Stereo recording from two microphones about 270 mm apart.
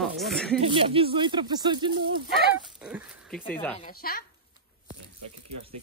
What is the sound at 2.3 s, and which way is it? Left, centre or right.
Speech, centre.